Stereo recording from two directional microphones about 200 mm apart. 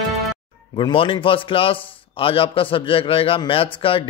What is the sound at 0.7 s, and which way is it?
A man's voice, 25° left (ahead or behind).